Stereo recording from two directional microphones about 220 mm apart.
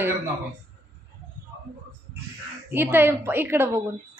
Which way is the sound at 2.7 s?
10° right (ahead or behind).